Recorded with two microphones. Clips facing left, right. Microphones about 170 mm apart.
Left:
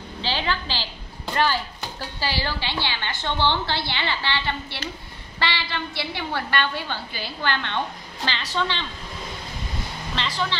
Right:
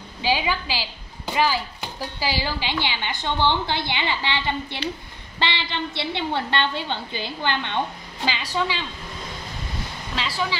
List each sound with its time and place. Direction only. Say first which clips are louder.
0.2 s a woman's voice: right 3 dB; 10° right (ahead or behind)
10.1 s speech: right 1 dB; 5° right (ahead or behind)